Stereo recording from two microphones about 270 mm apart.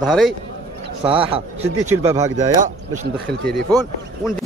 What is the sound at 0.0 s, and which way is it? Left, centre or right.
Speech, centre.